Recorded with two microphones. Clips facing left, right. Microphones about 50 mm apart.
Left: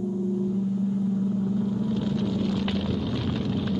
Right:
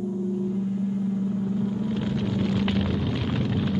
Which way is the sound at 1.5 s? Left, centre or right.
Centre.